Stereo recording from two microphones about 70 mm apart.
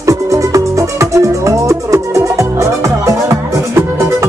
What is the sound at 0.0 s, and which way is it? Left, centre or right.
Music, right.